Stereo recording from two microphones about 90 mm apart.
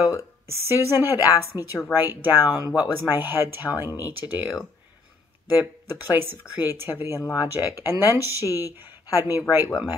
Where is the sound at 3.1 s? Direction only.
25° right (ahead or behind).